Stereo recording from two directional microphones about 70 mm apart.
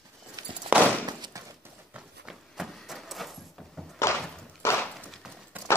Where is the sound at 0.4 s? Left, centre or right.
Right.